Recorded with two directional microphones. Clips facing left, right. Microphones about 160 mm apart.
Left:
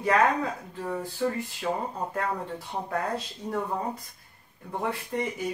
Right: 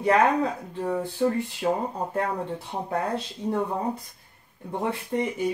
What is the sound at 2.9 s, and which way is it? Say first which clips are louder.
Speech: right 3 dB; 25° right (ahead or behind).